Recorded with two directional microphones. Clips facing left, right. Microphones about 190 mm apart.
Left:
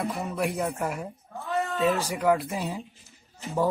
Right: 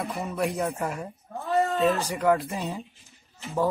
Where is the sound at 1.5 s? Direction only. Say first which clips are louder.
Right 5 dB; 35° right (ahead or behind).